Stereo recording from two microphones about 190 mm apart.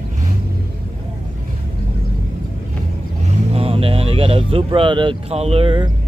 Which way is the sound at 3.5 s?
30° right (ahead or behind).